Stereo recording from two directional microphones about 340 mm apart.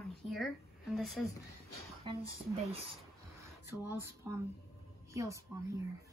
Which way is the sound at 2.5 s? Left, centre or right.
Centre.